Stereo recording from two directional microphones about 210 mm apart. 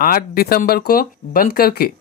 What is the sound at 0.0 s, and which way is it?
Speech, 45° left (ahead or behind).